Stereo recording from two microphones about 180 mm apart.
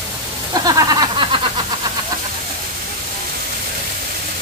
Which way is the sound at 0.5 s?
20° right (ahead or behind).